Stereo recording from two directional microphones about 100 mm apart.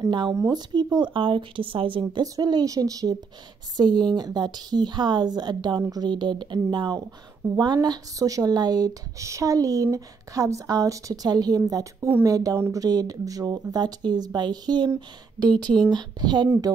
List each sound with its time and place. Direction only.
0.1 s speech: 45° right (ahead or behind)
0.9 s speech: 55° right (ahead or behind)
2.2 s speech: 40° right (ahead or behind)
15.9 s speech: 45° right (ahead or behind)